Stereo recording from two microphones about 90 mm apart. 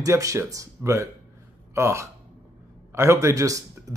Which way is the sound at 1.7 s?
30° right (ahead or behind).